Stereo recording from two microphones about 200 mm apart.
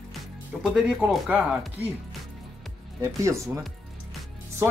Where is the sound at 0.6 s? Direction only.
5° right (ahead or behind).